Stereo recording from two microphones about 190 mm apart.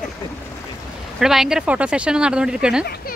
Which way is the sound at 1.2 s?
Centre (ahead or behind).